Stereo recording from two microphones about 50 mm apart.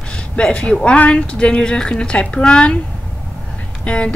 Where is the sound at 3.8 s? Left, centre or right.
Left.